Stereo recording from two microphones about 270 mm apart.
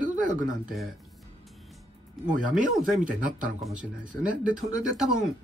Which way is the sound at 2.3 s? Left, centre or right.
Right.